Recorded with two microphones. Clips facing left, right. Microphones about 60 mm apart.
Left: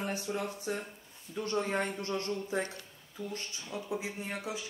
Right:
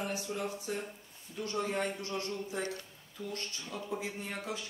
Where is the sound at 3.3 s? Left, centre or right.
Centre.